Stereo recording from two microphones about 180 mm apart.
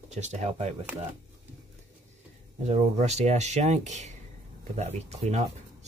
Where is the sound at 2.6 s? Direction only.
40° right (ahead or behind).